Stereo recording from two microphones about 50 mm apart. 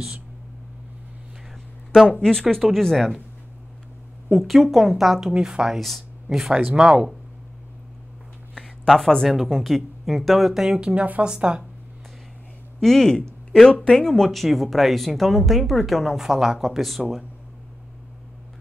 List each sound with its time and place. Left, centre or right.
2.5 s speech: centre
4.3 s speech: centre
5.8 s speech: centre
6.5 s speech: centre
8.8 s a woman's voice: centre
12.8 s speech: centre